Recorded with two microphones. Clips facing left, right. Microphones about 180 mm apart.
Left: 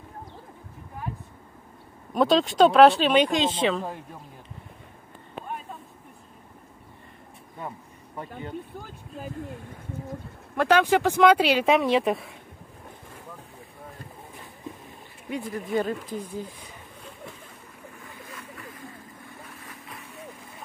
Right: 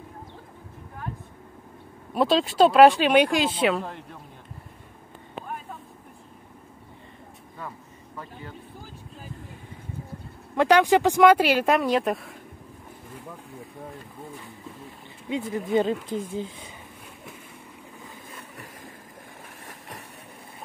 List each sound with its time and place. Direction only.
2.1 s speech: 5° right (ahead or behind)
3.8 s a man's voice: 10° left (ahead or behind)
8.2 s a man's voice: 25° left (ahead or behind)
10.5 s speech: 15° right (ahead or behind); by 12.4 s centre (ahead or behind)
15.2 s speech: 20° right (ahead or behind)